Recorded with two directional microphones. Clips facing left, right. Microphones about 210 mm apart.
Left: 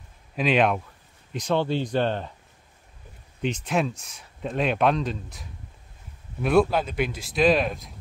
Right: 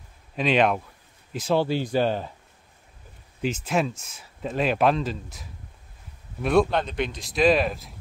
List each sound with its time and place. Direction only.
0.4 s speech: centre (ahead or behind)
3.4 s speech: centre (ahead or behind)